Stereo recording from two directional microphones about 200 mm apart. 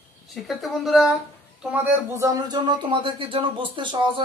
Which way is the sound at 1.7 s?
15° right (ahead or behind).